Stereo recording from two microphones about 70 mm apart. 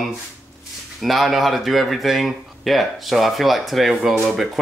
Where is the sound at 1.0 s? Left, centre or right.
Centre.